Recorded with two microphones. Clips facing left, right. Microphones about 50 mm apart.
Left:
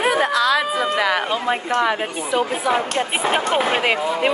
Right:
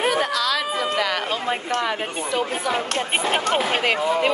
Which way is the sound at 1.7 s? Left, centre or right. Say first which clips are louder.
Left 4 dB; centre.